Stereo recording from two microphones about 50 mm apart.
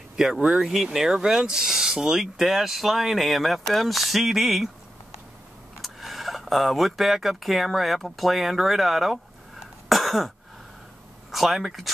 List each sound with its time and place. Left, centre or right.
0.1 s vehicle: centre
0.6 s speech: centre
5.8 s speech: centre
9.8 s throat clearing: centre
11.3 s speech: centre